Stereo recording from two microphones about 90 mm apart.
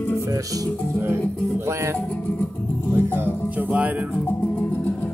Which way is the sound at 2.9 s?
25° right (ahead or behind).